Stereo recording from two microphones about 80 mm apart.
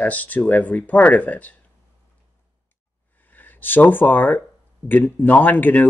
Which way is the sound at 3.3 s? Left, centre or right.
Left.